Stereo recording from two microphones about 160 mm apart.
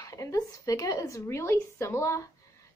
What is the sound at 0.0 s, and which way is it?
A woman's voice, 20° left (ahead or behind).